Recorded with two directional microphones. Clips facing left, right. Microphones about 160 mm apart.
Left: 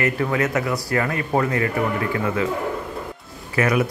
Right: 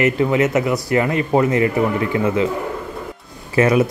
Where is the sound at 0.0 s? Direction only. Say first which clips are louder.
Right 5 dB; 20° right (ahead or behind).